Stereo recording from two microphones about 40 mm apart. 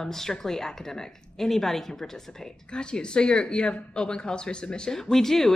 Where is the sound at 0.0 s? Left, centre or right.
Centre.